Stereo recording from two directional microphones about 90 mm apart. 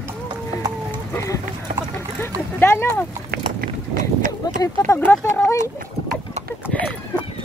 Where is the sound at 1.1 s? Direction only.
35° left (ahead or behind).